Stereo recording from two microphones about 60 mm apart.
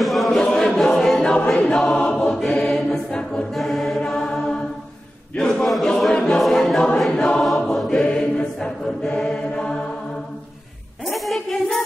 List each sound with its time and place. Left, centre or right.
0.0 s chant: centre
0.4 s choir: centre
3.5 s mantra: centre
5.5 s choir: centre
7.4 s choir: centre
11.1 s music: centre